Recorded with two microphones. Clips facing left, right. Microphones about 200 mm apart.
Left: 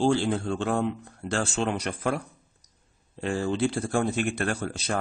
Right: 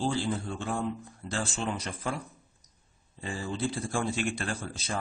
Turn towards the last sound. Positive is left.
turn(degrees=70)  # may be behind; listen again after turning